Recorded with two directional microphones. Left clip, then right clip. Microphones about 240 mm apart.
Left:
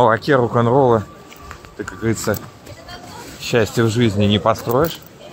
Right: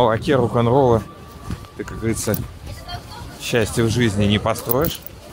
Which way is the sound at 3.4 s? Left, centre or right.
Centre.